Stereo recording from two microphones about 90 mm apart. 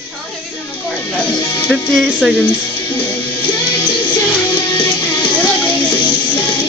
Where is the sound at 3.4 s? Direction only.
55° left (ahead or behind).